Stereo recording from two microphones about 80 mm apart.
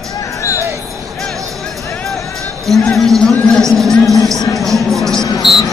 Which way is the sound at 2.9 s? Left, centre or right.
Centre.